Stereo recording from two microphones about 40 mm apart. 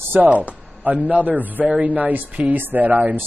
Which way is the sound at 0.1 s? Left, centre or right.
Right.